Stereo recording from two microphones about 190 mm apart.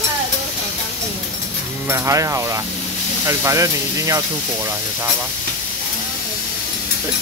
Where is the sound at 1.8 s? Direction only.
15° right (ahead or behind).